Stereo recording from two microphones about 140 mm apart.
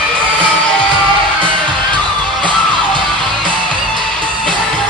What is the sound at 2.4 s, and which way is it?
Music, 35° right (ahead or behind).